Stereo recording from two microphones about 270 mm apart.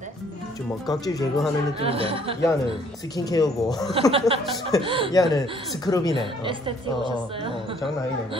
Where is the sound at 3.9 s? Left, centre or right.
Right.